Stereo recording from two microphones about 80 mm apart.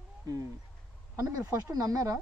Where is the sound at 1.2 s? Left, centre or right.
Right.